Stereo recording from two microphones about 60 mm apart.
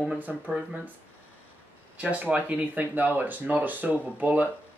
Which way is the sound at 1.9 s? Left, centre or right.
Right.